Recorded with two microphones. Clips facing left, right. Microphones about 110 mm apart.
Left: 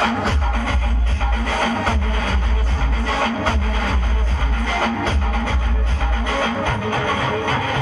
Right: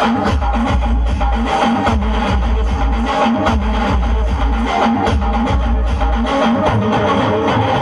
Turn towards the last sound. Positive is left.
turn(degrees=-15)  # may be behind; listen again after turning